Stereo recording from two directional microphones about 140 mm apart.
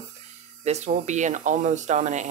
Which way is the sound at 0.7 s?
55° right (ahead or behind).